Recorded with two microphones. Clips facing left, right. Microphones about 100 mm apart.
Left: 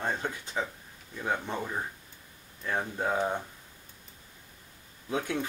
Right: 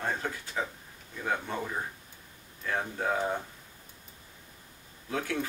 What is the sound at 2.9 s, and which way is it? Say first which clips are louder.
Speech: left 1 dB; 15° left (ahead or behind).